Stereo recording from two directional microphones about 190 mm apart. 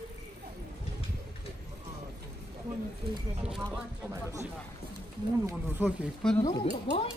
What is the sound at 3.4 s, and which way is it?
Speech, centre (ahead or behind).